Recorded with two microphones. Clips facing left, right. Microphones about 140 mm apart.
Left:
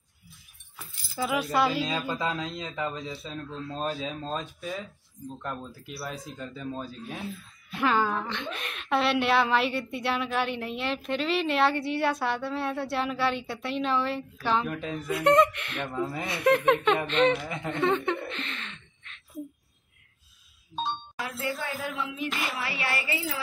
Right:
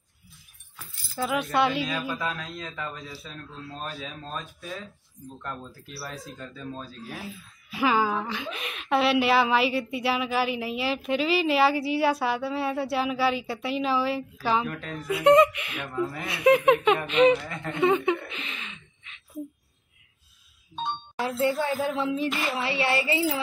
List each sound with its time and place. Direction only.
1.1 s speech: 5° left (ahead or behind)
1.9 s speech: 30° left (ahead or behind)
7.2 s speech: centre (ahead or behind)
14.7 s speech: 15° left (ahead or behind)
15.0 s speech: 5° right (ahead or behind)
15.9 s speech: 20° left (ahead or behind)
16.3 s speech: 5° right (ahead or behind)
21.2 s speech: 30° right (ahead or behind)